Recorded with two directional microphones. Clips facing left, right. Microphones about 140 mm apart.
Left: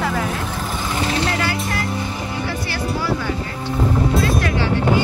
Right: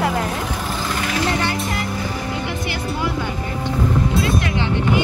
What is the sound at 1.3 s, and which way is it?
Speech, 25° right (ahead or behind).